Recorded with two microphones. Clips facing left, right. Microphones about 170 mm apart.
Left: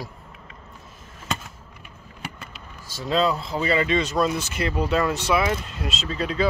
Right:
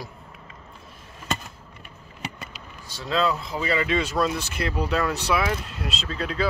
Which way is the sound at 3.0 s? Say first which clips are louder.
Left 2 dB; 40° left (ahead or behind).